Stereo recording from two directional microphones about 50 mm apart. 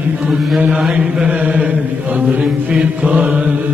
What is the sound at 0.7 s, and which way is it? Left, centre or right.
Chant, centre.